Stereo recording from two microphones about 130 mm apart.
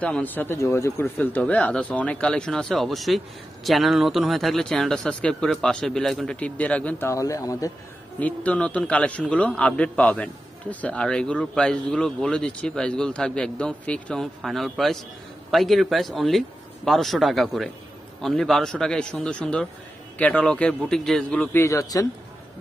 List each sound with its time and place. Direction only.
0.0 s a man's voice: 10° left (ahead or behind)
8.2 s a man's voice: 10° left (ahead or behind)
21.6 s speech: 25° left (ahead or behind)